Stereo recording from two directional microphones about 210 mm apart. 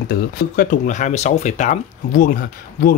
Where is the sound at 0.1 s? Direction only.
40° left (ahead or behind).